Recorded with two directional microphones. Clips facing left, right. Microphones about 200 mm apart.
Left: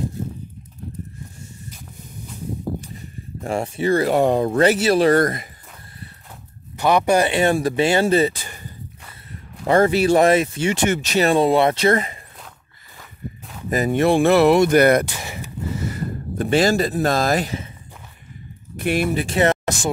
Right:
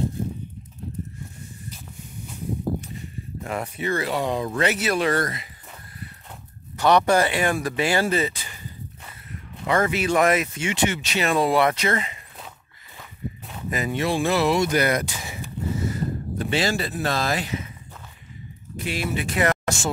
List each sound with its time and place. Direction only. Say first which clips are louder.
3.4 s speech: left 7 dB; 30° left (ahead or behind)
4.1 s speech: left 8 dB; 50° left (ahead or behind)
4.7 s speech: left 7 dB; 30° left (ahead or behind)
6.8 s speech: left 1 dB; 10° left (ahead or behind)
7.2 s speech: left 5 dB; 25° left (ahead or behind)
9.3 s speech: left 6 dB; 35° left (ahead or behind)
11.3 s speech: left 1 dB; 25° left (ahead or behind)
13.7 s a sound: left 7 dB; 40° left (ahead or behind); by 16.0 s 70° left (ahead or behind)
16.3 s speech: left 7 dB; 45° left (ahead or behind)
18.8 s speech: left 8 dB; 55° left (ahead or behind)
19.1 s speech: left 4 dB; 30° left (ahead or behind)